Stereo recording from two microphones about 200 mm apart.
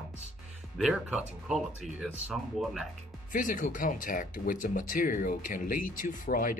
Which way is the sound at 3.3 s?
40° left (ahead or behind).